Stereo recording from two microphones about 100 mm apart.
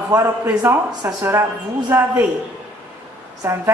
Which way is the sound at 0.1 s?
20° right (ahead or behind).